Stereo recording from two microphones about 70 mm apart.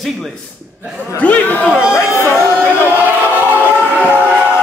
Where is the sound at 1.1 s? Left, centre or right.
Left.